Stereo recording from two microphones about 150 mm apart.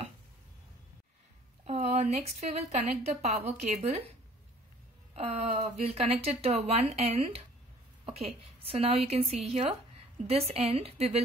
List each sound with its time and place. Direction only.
1.7 s a woman's voice: 45° right (ahead or behind)
5.1 s a woman's voice: 45° right (ahead or behind)